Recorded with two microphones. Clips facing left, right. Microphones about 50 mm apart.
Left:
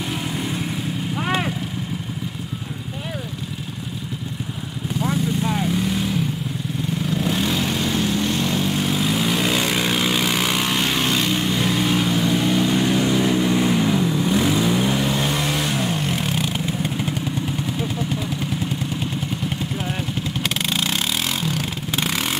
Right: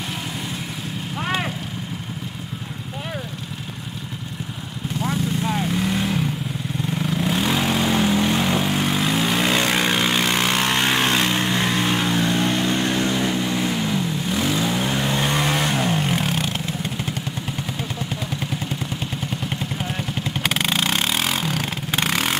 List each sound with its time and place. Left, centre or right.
1.1 s vehicle: centre
5.0 s vehicle: centre; by 8.6 s right
8.6 s vehicle: centre
20.4 s vehicle: centre